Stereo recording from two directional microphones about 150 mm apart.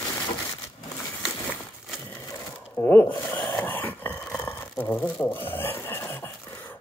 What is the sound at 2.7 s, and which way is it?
Speech, 15° left (ahead or behind).